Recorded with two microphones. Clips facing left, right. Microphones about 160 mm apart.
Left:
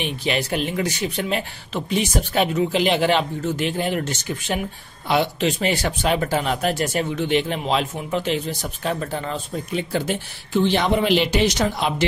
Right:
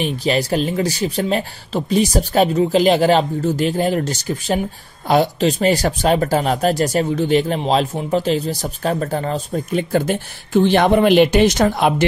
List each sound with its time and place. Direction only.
0.0 s speech: 35° right (ahead or behind)